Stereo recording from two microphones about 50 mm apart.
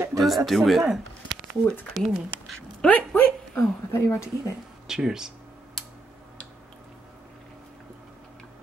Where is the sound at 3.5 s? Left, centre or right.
Left.